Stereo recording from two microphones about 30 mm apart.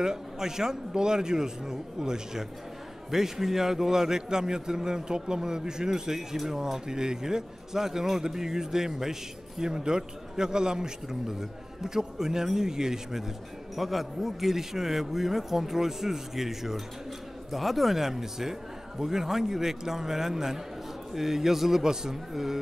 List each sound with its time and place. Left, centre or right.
0.0 s a man's voice: centre
3.1 s a man's voice: centre
13.7 s a man's voice: centre
21.8 s a man's voice: right
22.3 s a man's voice: centre